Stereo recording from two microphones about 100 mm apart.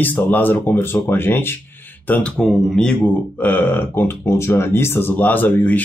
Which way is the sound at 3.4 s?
20° left (ahead or behind).